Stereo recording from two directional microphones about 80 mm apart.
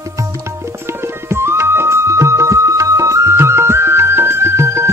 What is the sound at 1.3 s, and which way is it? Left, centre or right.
Music, right.